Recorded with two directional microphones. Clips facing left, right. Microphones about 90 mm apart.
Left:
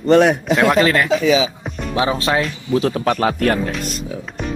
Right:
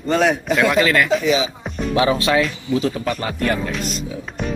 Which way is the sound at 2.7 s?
55° left (ahead or behind).